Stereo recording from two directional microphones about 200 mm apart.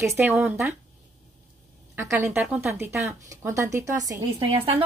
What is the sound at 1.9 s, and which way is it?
Speech, 10° right (ahead or behind).